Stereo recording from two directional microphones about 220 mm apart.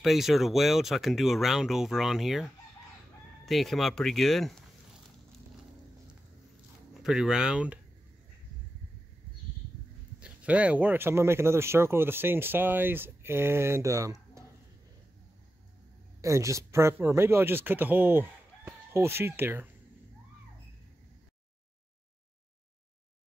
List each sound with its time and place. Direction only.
0.0 s speech: centre (ahead or behind)
6.9 s speech: centre (ahead or behind)
10.2 s speech: 5° right (ahead or behind)
16.2 s speech: 15° right (ahead or behind)